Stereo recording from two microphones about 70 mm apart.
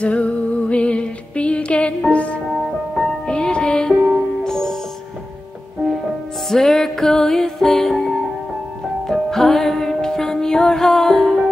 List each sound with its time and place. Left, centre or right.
0.0 s music: centre
2.5 s music: centre
3.3 s music: centre
6.5 s music: centre